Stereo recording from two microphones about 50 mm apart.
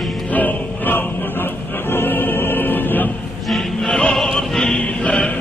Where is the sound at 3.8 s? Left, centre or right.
Centre.